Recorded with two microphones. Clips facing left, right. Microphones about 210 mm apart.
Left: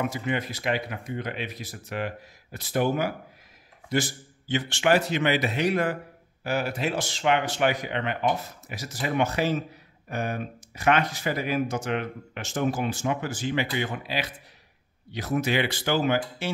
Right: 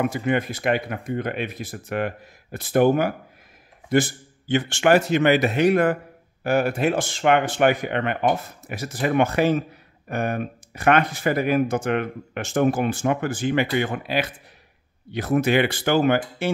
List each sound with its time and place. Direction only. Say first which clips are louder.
0.0 s speech: right 6 dB; 55° right (ahead or behind)